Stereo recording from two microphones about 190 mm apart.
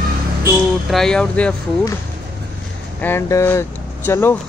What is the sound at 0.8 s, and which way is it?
Speech, centre (ahead or behind).